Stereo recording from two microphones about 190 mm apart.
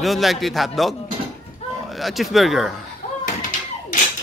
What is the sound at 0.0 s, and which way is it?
Speech, centre (ahead or behind).